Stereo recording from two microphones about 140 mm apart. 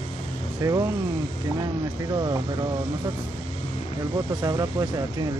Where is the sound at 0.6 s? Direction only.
25° right (ahead or behind).